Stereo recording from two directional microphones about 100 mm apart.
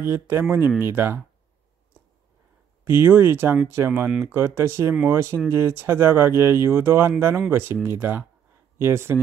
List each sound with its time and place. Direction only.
0.0 s speech: 25° right (ahead or behind)
2.8 s speech: 25° right (ahead or behind)